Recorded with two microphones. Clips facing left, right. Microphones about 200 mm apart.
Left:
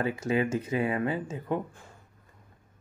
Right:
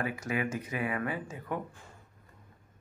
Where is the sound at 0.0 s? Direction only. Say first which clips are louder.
Left 5 dB; 25° left (ahead or behind).